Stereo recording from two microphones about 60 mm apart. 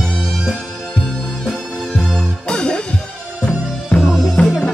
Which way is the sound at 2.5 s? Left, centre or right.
Centre.